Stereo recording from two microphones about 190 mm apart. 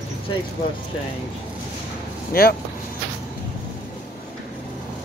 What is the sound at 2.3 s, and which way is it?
Speech, 50° left (ahead or behind).